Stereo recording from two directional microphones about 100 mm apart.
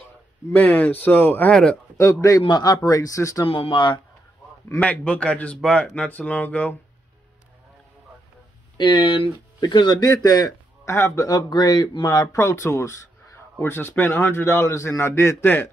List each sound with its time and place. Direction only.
0.5 s speech: 15° left (ahead or behind)
1.5 s speech: 10° left (ahead or behind)
2.4 s speech: 40° left (ahead or behind)
3.4 s speech: 65° left (ahead or behind)
4.7 s speech: 15° left (ahead or behind)
8.7 s speech: 50° left (ahead or behind)
10.9 s a man's voice: 25° left (ahead or behind)
11.2 s a man's voice: 45° left (ahead or behind); by 15.7 s 20° left (ahead or behind)